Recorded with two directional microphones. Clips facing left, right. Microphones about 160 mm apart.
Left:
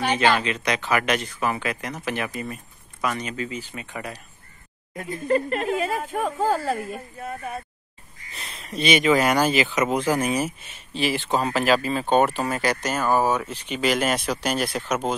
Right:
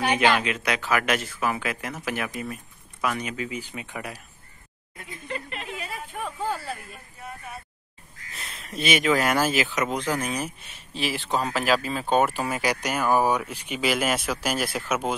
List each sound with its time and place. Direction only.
0.0 s speech: 10° right (ahead or behind)
4.9 s speech: 45° left (ahead or behind)
8.3 s speech: centre (ahead or behind)